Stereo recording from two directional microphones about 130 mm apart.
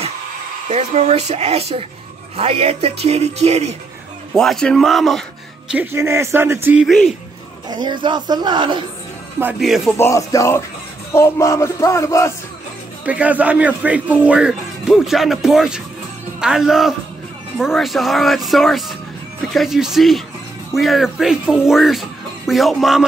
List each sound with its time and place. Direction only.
0.7 s speech: 60° right (ahead or behind)
4.4 s speech: 5° left (ahead or behind)
5.7 s speech: 15° right (ahead or behind)
6.8 s speech: centre (ahead or behind)
7.7 s speech: 35° right (ahead or behind)
9.6 s speech: centre (ahead or behind)
9.9 s a sound: 25° left (ahead or behind)
13.0 s speech: 10° right (ahead or behind)